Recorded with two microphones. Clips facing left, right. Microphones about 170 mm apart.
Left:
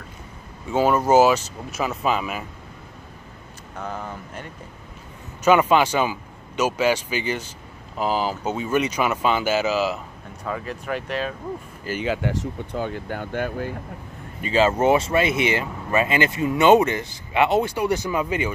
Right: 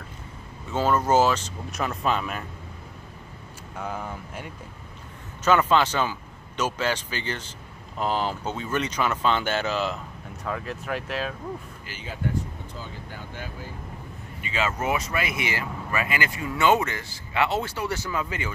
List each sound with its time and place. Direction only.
0.7 s speech: 10° left (ahead or behind)
3.7 s speech: 5° right (ahead or behind)
5.4 s speech: 15° left (ahead or behind)
12.0 s speech: 85° left; by 13.7 s 60° left (ahead or behind)
14.4 s speech: 30° left (ahead or behind)